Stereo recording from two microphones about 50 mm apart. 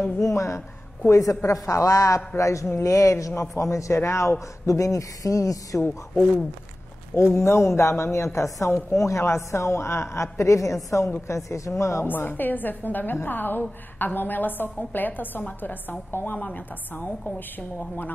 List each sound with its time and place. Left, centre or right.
0.2 s a woman's voice: left
7.2 s a woman's voice: left
12.1 s a woman's voice: left
16.3 s a woman's voice: left